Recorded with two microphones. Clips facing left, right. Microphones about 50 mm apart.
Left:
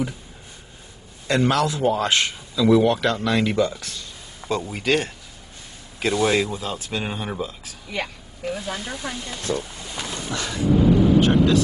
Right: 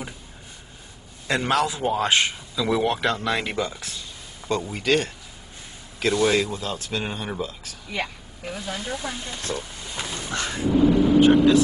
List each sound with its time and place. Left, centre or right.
1.2 s speech: centre
9.9 s a sound: centre
10.3 s thunder: right
11.1 s speech: centre